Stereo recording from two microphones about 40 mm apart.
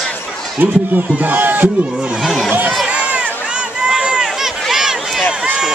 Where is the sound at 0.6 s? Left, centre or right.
Right.